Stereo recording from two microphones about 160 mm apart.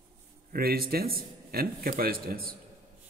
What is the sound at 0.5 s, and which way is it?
A man's voice, 70° right (ahead or behind).